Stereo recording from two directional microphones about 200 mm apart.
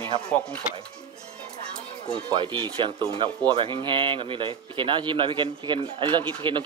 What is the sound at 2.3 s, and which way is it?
Speech, 25° right (ahead or behind).